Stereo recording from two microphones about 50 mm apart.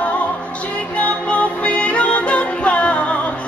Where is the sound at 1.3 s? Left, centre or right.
Left.